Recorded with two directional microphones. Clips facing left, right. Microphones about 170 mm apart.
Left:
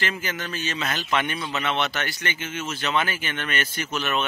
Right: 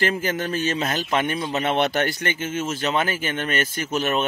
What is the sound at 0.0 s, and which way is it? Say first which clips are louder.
Speech: right 6 dB; 45° right (ahead or behind).